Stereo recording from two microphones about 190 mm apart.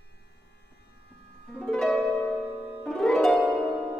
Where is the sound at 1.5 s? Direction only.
5° left (ahead or behind).